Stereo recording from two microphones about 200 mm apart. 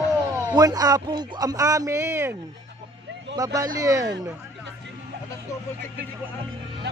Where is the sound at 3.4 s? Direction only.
20° right (ahead or behind).